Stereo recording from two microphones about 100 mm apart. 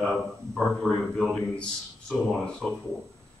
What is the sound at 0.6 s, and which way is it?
Speech, 5° left (ahead or behind).